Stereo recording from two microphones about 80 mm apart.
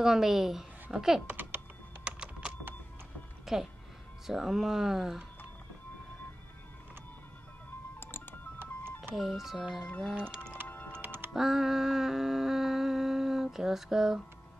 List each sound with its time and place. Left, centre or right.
0.0 s speech: centre
1.3 s typing: right
2.0 s typing: centre
3.5 s speech: centre
8.0 s music: left
8.5 s music: right
9.1 s speech: centre
10.9 s music: right
11.3 s humming: centre